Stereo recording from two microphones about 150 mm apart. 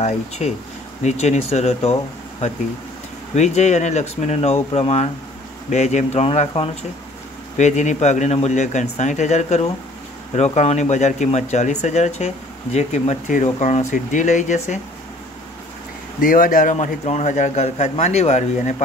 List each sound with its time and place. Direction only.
1.0 s a man's voice: 50° left (ahead or behind)
3.3 s a man's voice: 50° left (ahead or behind)
7.5 s a man's voice: 50° left (ahead or behind)
16.2 s a man's voice: 65° left (ahead or behind)